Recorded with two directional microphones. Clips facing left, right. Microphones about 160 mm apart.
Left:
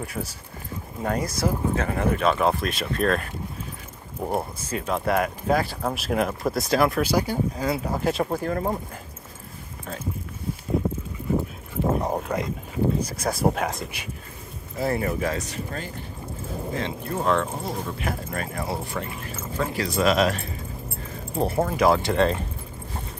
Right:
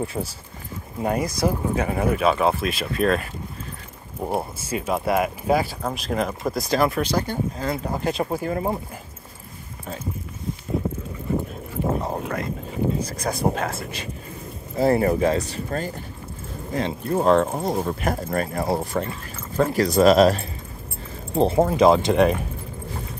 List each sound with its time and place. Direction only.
0.0 s speech: 25° right (ahead or behind)
1.0 s speech: 15° right (ahead or behind)
4.3 s speech: 5° right (ahead or behind)
12.0 s dog: 15° left (ahead or behind)
13.0 s speech: 10° left (ahead or behind)
14.8 s speech: 35° right (ahead or behind)
21.4 s speech: 20° right (ahead or behind)